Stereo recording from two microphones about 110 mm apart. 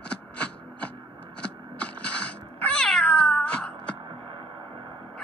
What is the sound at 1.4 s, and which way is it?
Cat, 10° left (ahead or behind).